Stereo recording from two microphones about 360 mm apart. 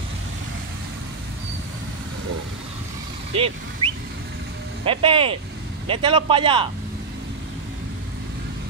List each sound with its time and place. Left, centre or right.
3.3 s a man's voice: centre